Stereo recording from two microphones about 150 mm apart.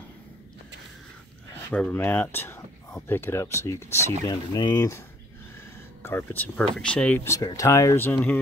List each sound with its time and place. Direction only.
1.7 s speech: 10° left (ahead or behind)
4.3 s speech: 30° left (ahead or behind)
6.0 s speech: 10° left (ahead or behind)